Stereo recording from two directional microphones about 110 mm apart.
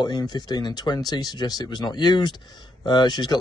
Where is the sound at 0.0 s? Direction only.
40° left (ahead or behind).